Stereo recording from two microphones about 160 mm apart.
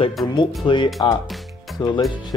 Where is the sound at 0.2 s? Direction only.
Centre (ahead or behind).